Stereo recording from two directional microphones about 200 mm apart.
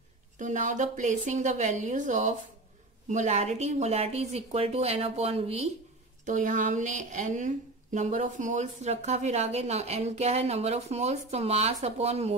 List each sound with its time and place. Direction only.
0.4 s a woman's voice: 40° right (ahead or behind)